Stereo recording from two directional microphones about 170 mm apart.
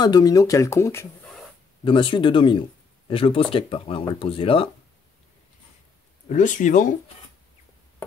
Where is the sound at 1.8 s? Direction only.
30° left (ahead or behind).